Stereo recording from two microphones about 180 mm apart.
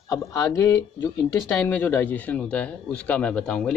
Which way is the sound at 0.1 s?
15° left (ahead or behind).